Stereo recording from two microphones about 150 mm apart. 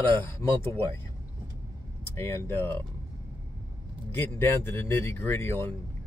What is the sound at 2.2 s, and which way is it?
Speech, 15° left (ahead or behind).